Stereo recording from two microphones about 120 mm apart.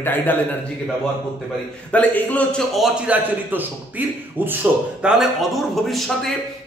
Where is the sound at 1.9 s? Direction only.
10° left (ahead or behind).